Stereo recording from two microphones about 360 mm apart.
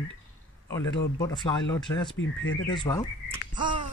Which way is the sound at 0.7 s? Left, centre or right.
Centre.